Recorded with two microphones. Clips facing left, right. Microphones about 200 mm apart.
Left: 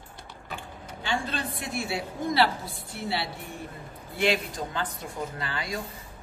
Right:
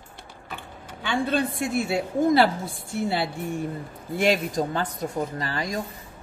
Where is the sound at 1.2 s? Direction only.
50° right (ahead or behind).